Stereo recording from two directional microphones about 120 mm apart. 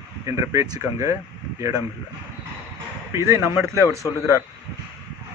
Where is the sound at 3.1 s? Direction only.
25° right (ahead or behind).